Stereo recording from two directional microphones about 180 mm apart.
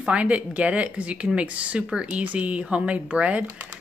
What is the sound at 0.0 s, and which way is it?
Speech, 5° right (ahead or behind).